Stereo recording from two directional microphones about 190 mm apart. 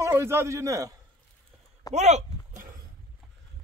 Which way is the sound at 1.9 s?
35° right (ahead or behind).